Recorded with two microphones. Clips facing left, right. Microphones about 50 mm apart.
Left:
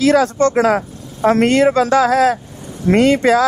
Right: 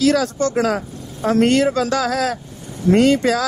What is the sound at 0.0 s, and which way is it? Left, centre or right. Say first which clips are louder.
Speech: left 4 dB; left.